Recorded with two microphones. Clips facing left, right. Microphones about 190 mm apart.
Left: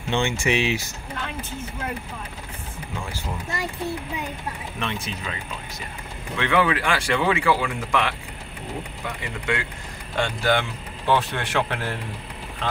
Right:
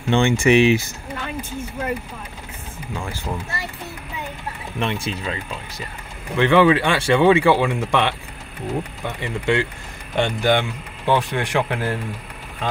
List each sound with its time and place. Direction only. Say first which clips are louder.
0.1 s speech: right 7 dB; 55° right (ahead or behind)
4.7 s speech: right 8 dB; 30° right (ahead or behind)
6.3 s speech: right 7 dB; 30° right (ahead or behind); by 12.0 s 10° right (ahead or behind)